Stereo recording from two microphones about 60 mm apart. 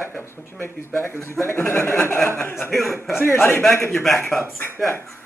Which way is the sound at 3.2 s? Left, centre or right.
Left.